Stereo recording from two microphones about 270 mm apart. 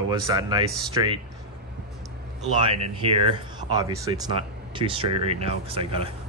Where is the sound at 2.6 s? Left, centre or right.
Centre.